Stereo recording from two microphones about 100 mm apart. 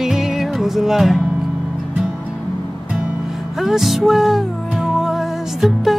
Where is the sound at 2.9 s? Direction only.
5° right (ahead or behind).